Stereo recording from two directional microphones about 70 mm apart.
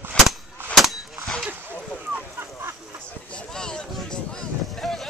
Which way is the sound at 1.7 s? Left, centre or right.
Right.